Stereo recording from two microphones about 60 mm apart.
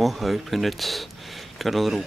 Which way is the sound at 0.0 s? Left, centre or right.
Centre.